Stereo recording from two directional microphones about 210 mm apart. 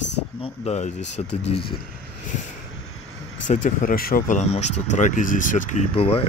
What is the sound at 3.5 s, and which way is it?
Speech, 35° left (ahead or behind).